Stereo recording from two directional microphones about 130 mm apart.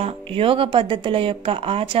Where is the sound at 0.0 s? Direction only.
45° right (ahead or behind).